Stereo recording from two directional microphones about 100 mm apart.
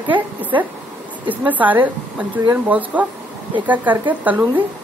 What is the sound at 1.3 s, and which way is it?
Speech, 15° right (ahead or behind).